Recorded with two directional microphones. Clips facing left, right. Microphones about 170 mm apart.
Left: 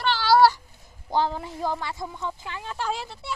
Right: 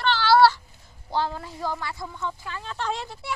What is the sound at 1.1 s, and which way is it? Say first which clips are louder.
Speech: left 2 dB; 15° left (ahead or behind).